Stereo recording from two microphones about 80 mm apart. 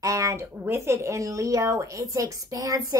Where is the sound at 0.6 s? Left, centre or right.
Right.